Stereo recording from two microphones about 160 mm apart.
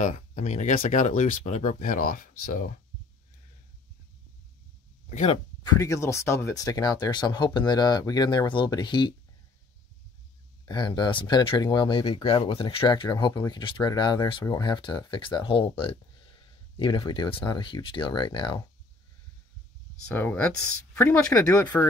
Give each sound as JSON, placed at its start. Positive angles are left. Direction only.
{"t": 0.0, "sound": "speech", "side_deg": 50}
{"t": 5.1, "sound": "speech", "side_deg": 40}
{"t": 5.8, "sound": "speech", "side_deg": 20}
{"t": 10.6, "sound": "speech", "side_deg": 25}
{"t": 20.2, "sound": "speech", "side_deg": 10}